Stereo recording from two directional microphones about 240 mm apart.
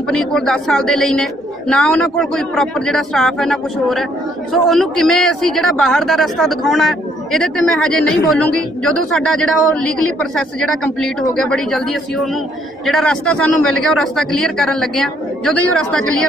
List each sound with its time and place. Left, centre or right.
0.1 s speech: centre